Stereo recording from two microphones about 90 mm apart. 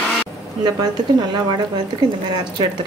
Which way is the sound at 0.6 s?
50° right (ahead or behind).